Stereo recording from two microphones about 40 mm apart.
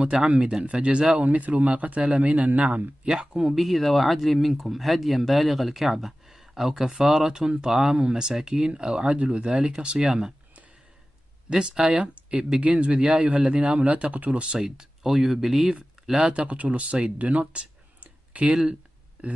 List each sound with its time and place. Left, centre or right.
0.4 s speech: right
1.1 s speech: right
3.0 s speech: right
3.5 s speech: centre
11.5 s speech: centre
12.0 s speech: right
13.7 s speech: right
14.6 s speech: centre
16.1 s speech: centre
18.5 s speech: right
19.2 s speech: right